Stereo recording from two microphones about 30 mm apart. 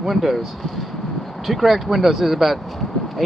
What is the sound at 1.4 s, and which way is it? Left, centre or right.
Speech, centre.